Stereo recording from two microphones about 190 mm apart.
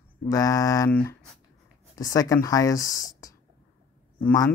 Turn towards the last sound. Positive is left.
turn(degrees=15)  # may be behind; listen again after turning